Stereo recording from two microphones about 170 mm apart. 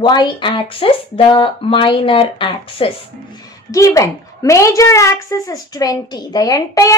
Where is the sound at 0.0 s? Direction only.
25° left (ahead or behind).